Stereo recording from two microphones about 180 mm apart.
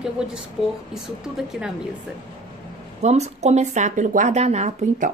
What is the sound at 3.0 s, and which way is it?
Speech, 40° right (ahead or behind).